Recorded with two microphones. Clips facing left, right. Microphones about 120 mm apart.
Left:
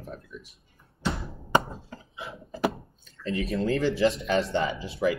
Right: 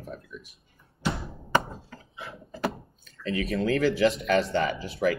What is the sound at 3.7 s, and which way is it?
Speech, 75° right (ahead or behind).